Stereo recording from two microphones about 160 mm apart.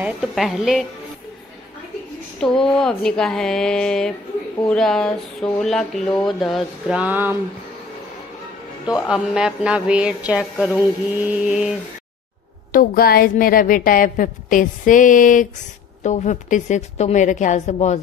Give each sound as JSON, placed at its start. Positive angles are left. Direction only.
{"t": 0.0, "sound": "speech", "side_deg": -5}
{"t": 2.4, "sound": "speech", "side_deg": 5}
{"t": 8.8, "sound": "speech", "side_deg": -5}
{"t": 12.7, "sound": "a woman's voice", "side_deg": 70}